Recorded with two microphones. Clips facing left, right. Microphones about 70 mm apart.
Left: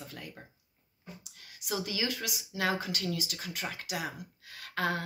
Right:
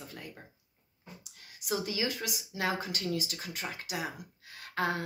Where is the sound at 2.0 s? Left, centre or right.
Right.